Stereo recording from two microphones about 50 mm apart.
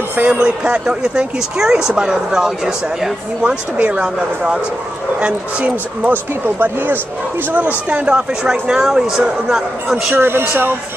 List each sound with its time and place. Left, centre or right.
0.2 s speech: right; by 3.1 s centre
3.4 s speech: right
6.4 s speech: right
7.5 s speech: right
8.1 s speech: centre
10.1 s speech: right